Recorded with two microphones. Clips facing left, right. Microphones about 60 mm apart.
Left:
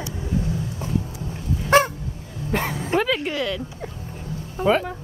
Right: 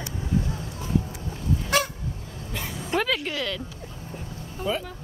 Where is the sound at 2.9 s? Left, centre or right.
Centre.